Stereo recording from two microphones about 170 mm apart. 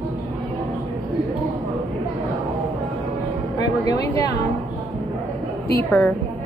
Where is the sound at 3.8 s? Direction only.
20° left (ahead or behind).